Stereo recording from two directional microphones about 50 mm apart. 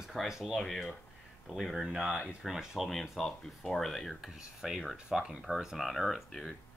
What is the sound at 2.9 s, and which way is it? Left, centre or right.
Speech, centre.